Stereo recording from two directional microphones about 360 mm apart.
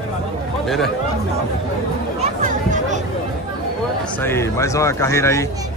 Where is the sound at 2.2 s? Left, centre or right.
Right.